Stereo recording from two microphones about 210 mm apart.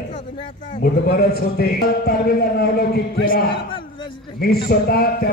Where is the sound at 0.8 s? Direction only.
45° left (ahead or behind).